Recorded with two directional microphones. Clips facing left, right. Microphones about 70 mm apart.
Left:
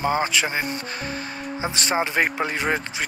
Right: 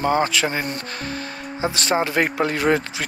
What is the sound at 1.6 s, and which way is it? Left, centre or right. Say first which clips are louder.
Speech: right 3 dB; left.